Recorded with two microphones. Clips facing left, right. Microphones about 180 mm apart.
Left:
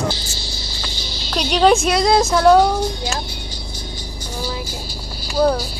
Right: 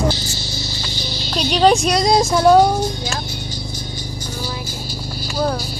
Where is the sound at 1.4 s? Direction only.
5° left (ahead or behind).